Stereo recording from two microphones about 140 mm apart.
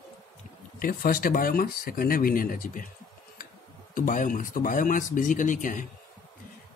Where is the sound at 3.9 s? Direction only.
70° left (ahead or behind).